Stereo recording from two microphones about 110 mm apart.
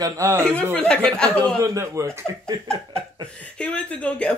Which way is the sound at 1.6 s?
25° right (ahead or behind).